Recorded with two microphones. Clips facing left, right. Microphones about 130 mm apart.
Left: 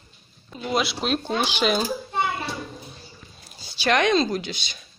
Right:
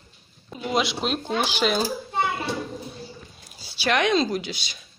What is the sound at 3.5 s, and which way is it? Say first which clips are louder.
Speech: left 2 dB; 10° right (ahead or behind).